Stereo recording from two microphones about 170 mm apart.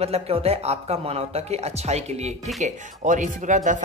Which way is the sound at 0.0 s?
35° right (ahead or behind).